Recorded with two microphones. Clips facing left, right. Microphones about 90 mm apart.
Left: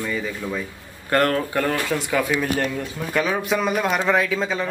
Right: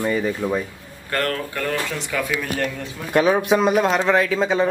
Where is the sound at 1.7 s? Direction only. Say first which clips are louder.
Left 2 dB; 10° left (ahead or behind).